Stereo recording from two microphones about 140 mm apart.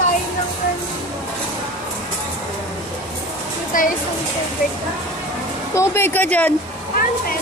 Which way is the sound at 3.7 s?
80° left.